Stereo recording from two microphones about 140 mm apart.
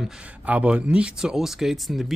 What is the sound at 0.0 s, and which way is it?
Speech, 5° right (ahead or behind).